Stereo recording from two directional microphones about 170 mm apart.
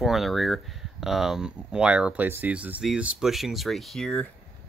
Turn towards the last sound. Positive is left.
turn(degrees=5)  # may be behind; listen again after turning